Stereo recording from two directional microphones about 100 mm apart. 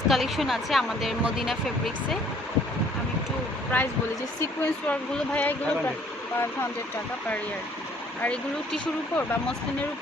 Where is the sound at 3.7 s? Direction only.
20° left (ahead or behind).